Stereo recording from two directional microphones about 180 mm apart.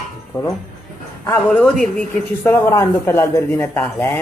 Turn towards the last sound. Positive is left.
turn(degrees=10)  # may be behind; listen again after turning